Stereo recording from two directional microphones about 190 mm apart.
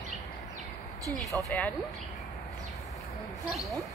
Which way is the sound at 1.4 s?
10° left (ahead or behind).